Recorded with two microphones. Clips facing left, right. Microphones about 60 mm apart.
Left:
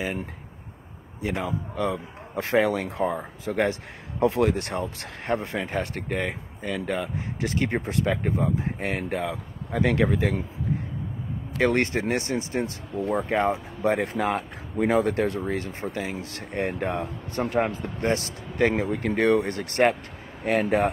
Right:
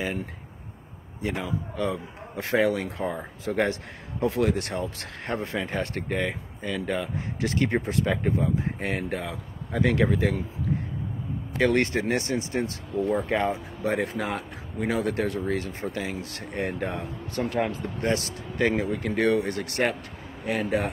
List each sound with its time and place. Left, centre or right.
1.4 s a man's voice: left
5.9 s speech: centre
7.0 s a man's voice: left
11.5 s a man's voice: left
18.9 s speech: left
20.4 s speech: left